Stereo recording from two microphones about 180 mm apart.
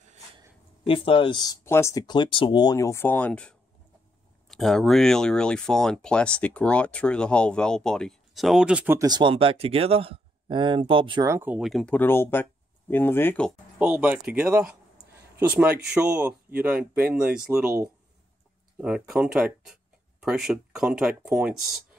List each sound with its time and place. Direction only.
0.8 s speech: 30° left (ahead or behind); by 13.5 s 10° left (ahead or behind)
13.7 s speech: 10° right (ahead or behind)